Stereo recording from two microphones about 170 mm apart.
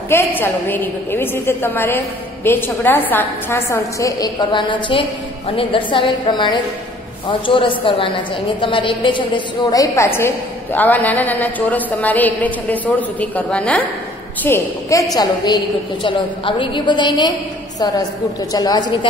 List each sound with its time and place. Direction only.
0.1 s a woman's voice: 10° left (ahead or behind)